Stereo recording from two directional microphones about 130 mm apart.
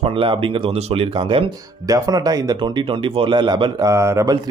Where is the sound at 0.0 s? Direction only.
45° right (ahead or behind).